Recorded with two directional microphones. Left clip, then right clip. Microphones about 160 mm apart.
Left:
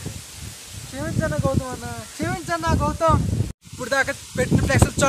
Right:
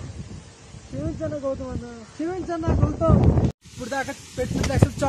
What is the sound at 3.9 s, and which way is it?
Speech, 35° left (ahead or behind).